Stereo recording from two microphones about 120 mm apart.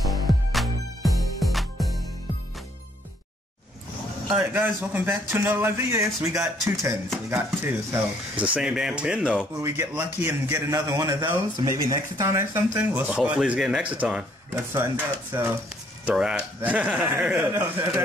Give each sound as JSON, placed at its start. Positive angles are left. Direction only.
{"t": 0.0, "sound": "music", "side_deg": 0}
{"t": 4.4, "sound": "speech", "side_deg": -15}
{"t": 8.5, "sound": "speech", "side_deg": -5}
{"t": 9.9, "sound": "speech", "side_deg": -20}
{"t": 14.5, "sound": "speech", "side_deg": -20}
{"t": 17.6, "sound": "speech", "side_deg": -35}